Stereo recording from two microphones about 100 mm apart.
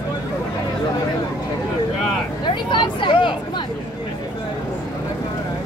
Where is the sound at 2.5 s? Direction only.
50° left (ahead or behind).